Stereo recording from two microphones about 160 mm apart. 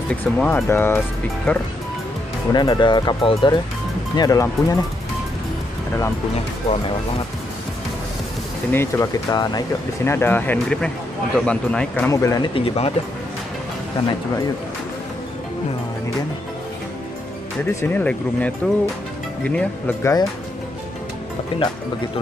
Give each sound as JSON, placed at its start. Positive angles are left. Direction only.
{"t": 0.1, "sound": "speech", "side_deg": 10}
{"t": 2.5, "sound": "speech", "side_deg": 30}
{"t": 8.7, "sound": "speech", "side_deg": 15}
{"t": 9.3, "sound": "speech", "side_deg": 25}
{"t": 12.1, "sound": "speech", "side_deg": 20}
{"t": 12.5, "sound": "speech", "side_deg": 35}
{"t": 17.7, "sound": "speech", "side_deg": 10}
{"t": 21.5, "sound": "speech", "side_deg": 35}